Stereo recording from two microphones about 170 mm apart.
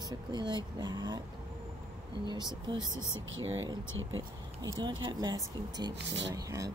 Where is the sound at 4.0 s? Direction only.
25° right (ahead or behind).